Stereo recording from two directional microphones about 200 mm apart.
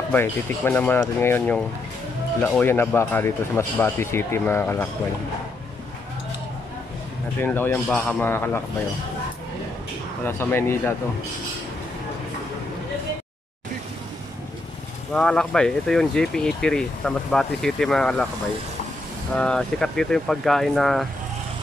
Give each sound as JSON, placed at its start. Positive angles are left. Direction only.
{"t": 0.1, "sound": "speech", "side_deg": 10}
{"t": 7.3, "sound": "speech", "side_deg": 10}
{"t": 10.2, "sound": "speech", "side_deg": 10}
{"t": 15.1, "sound": "speech", "side_deg": 5}
{"t": 19.3, "sound": "speech", "side_deg": 5}